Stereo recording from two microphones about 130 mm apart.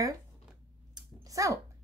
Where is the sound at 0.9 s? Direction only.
25° right (ahead or behind).